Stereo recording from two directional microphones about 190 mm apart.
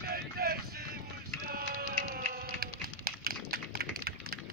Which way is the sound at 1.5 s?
45° right (ahead or behind).